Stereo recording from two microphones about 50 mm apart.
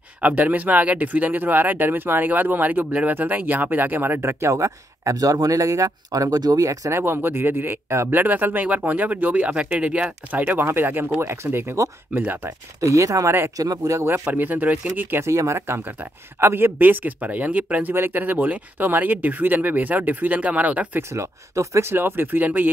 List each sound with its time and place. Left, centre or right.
0.2 s speech: right
4.3 s speech: right
7.0 s speech: right
10.6 s speech: right
11.1 s speech: right
12.1 s speech: right
12.4 s speech: right
14.2 s speech: right
15.1 s speech: right
16.3 s speech: right
17.9 s speech: right
21.1 s speech: right
21.9 s speech: right